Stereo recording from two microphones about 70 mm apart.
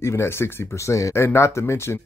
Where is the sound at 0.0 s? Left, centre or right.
Left.